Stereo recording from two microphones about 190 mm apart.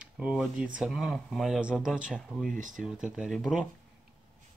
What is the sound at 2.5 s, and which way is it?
Speech, 40° right (ahead or behind).